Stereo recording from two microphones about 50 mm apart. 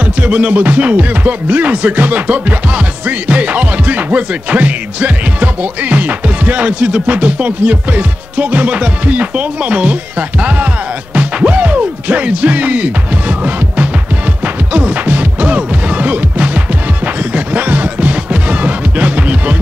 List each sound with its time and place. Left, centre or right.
0.0 s music: right